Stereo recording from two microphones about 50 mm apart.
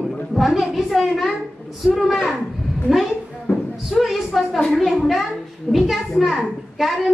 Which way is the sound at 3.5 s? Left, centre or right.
Left.